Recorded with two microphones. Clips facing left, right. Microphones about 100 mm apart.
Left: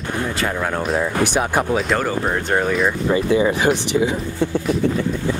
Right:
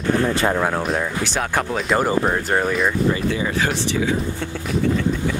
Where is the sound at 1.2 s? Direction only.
15° left (ahead or behind).